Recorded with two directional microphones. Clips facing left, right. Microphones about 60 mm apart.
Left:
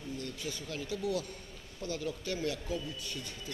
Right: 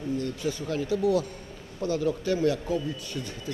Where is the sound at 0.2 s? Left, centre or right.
Right.